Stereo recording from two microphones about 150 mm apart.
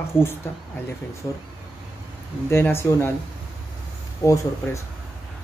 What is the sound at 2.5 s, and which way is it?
Speech, 15° left (ahead or behind).